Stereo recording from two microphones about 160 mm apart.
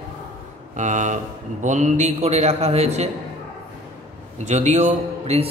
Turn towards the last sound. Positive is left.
turn(degrees=-45)  # may be behind; listen again after turning